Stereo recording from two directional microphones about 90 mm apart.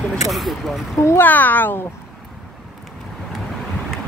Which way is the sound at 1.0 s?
25° left (ahead or behind).